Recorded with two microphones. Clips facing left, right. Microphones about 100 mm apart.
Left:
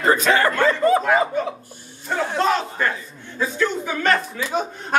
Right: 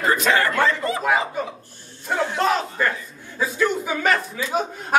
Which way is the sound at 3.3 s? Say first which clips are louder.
Even; 5° right (ahead or behind).